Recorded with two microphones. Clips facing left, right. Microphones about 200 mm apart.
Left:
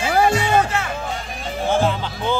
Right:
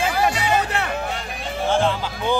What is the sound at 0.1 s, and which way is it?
Music, 50° left (ahead or behind).